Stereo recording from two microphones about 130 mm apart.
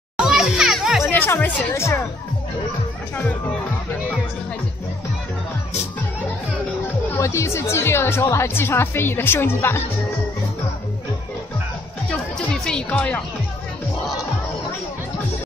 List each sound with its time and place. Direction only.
0.2 s children playing: 5° right (ahead or behind)
1.1 s a woman's voice: 15° left (ahead or behind)
7.2 s a woman's voice: 20° left (ahead or behind)
12.6 s speech: 10° left (ahead or behind)